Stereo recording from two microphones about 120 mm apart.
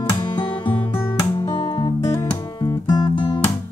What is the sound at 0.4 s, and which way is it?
Music, 45° left (ahead or behind).